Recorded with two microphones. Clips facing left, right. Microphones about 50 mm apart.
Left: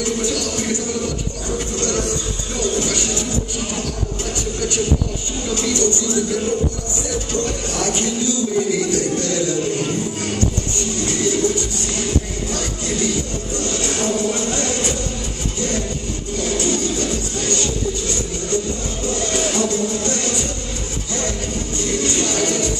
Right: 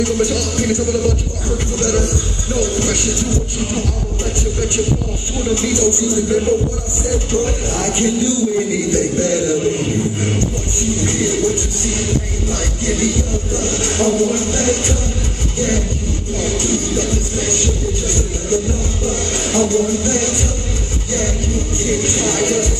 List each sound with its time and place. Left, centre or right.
0.0 s music: right
5.5 s speech: right
7.1 s music: right
16.3 s music: right
21.8 s music: right